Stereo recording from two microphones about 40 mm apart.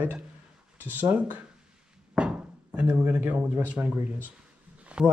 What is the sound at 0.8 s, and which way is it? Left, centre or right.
Speech, right.